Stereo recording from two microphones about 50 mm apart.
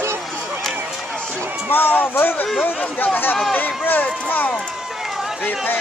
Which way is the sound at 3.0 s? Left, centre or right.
Left.